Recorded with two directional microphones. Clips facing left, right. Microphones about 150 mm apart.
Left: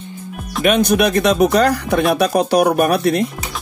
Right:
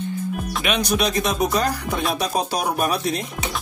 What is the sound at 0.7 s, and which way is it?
Speech, 50° left (ahead or behind).